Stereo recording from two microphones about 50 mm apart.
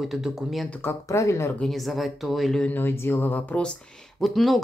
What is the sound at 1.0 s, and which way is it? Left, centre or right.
Speech, left.